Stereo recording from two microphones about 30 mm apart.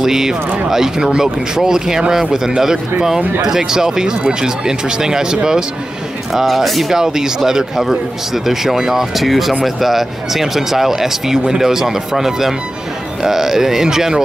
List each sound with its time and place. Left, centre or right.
0.0 s speech: centre
6.4 s speech: centre
6.9 s speech: centre
9.1 s speech: centre